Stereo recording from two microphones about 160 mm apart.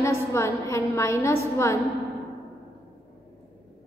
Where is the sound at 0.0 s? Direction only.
15° left (ahead or behind).